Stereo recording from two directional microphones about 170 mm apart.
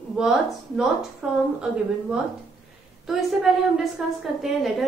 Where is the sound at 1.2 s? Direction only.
5° right (ahead or behind).